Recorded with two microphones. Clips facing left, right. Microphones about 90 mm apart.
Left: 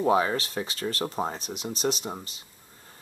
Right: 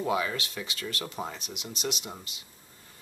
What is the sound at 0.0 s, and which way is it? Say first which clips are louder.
Speech: left 6 dB; 35° left (ahead or behind).